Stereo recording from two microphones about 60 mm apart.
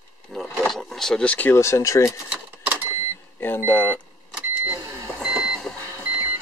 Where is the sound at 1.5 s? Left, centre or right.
Left.